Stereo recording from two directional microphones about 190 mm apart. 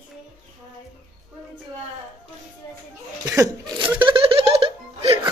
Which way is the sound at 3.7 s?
25° right (ahead or behind).